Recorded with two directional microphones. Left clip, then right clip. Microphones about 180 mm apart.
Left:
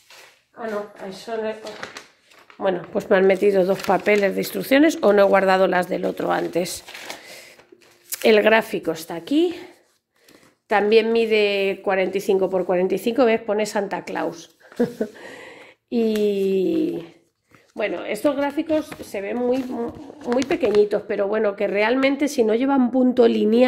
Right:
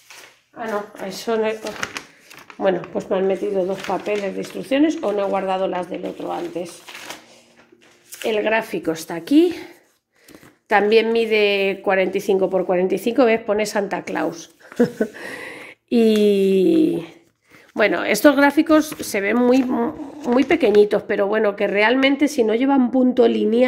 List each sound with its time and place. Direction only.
1.2 s speech: 50° right (ahead or behind)
3.1 s speech: 45° left (ahead or behind)
4.0 s speech: 40° left (ahead or behind)
8.2 s speech: 35° left (ahead or behind)
8.5 s a woman's voice: 20° left (ahead or behind)
8.7 s a woman's voice: 5° left (ahead or behind)
10.7 s a woman's voice: centre (ahead or behind)
14.8 s a sound: 15° right (ahead or behind)
17.7 s speech: 35° right (ahead or behind)
19.7 s speech: 30° right (ahead or behind)
20.4 s a woman's voice: 20° right (ahead or behind); by 23.6 s 5° left (ahead or behind)